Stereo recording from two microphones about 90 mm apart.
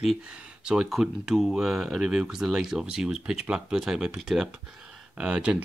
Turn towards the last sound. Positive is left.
turn(degrees=-10)  # may be behind; listen again after turning